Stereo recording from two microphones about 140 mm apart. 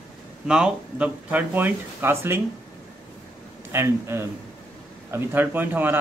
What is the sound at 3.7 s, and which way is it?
Speech, 20° right (ahead or behind).